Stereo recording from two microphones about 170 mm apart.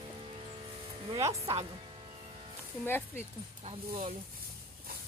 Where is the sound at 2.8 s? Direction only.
10° left (ahead or behind).